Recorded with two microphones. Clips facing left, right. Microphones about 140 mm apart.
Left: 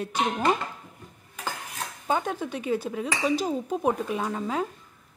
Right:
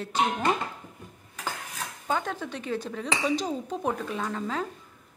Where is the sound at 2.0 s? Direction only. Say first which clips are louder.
Left 3 dB; 15° left (ahead or behind).